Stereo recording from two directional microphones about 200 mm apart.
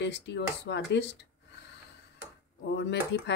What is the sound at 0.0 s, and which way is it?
Speech, 60° left (ahead or behind).